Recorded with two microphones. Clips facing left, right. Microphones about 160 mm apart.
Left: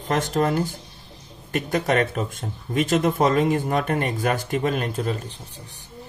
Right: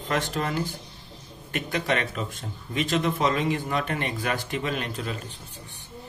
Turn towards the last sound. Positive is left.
turn(degrees=40)  # may be behind; listen again after turning